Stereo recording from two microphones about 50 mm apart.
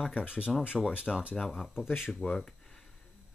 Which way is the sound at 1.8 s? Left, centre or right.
Left.